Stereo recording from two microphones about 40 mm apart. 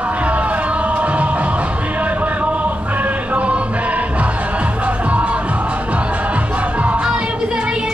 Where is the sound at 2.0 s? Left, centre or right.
Right.